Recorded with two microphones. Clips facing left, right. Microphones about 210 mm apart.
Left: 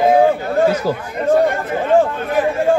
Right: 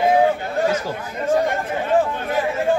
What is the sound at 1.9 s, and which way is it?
Chatter, centre (ahead or behind).